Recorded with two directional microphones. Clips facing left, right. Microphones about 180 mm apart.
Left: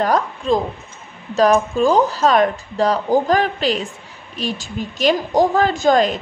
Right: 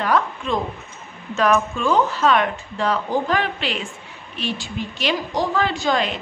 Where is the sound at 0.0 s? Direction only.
40° left (ahead or behind).